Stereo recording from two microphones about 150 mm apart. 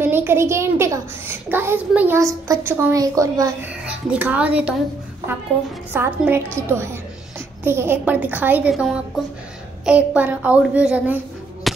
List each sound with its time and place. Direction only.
0.0 s a child's voice: 15° right (ahead or behind)
3.8 s a child's voice: 10° right (ahead or behind)
8.7 s a woman's voice: centre (ahead or behind)
11.7 s a sound: centre (ahead or behind)